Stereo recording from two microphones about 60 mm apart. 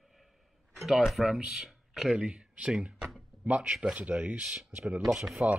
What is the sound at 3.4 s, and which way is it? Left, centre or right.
Speech, right.